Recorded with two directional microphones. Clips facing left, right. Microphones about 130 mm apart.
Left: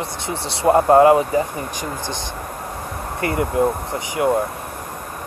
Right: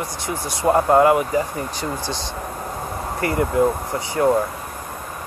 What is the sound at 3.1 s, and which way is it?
Speech, 25° left (ahead or behind).